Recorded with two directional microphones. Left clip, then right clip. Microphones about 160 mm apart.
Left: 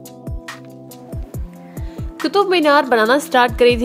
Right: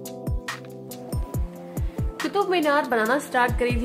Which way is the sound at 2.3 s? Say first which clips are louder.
Left 8 dB; 55° left (ahead or behind).